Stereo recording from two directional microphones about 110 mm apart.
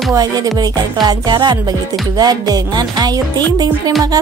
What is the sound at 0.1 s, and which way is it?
Speech, 35° right (ahead or behind).